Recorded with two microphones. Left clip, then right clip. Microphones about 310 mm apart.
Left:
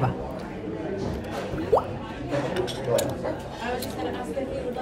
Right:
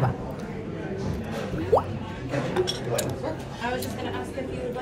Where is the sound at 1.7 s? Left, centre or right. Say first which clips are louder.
Even; centre.